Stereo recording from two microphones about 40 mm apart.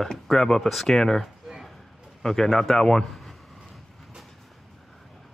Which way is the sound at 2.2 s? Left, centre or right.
Centre.